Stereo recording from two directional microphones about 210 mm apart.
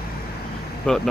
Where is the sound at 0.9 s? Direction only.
5° left (ahead or behind).